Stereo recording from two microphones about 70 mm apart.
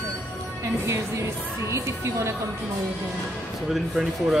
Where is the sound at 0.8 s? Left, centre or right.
Right.